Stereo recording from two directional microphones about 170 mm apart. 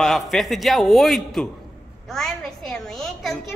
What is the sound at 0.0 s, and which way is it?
A woman's voice, centre (ahead or behind).